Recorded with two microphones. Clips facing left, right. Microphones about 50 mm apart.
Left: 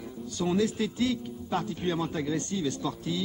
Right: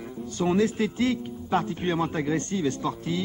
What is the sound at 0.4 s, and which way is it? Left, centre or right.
A man's voice, right.